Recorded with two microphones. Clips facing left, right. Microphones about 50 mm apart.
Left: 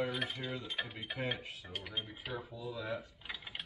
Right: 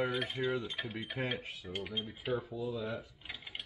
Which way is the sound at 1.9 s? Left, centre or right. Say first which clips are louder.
Right 2 dB; centre.